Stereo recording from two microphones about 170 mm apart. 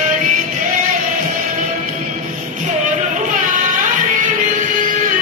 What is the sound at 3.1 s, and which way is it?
Music, 50° right (ahead or behind).